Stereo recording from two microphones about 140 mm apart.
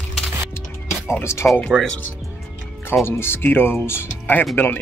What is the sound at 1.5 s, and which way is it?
Speech, centre (ahead or behind).